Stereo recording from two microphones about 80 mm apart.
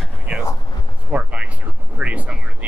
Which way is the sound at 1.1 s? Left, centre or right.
Centre.